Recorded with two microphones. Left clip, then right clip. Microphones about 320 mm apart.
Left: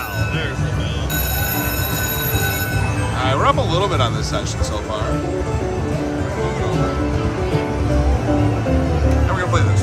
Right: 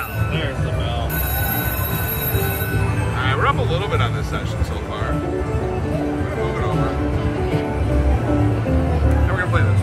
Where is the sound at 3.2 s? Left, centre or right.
Centre.